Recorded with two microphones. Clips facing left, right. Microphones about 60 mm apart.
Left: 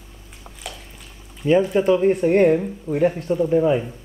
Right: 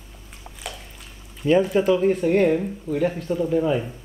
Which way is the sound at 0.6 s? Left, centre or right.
Centre.